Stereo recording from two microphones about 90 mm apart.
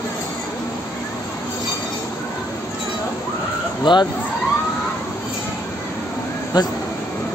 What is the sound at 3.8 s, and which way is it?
Speech, 55° left (ahead or behind).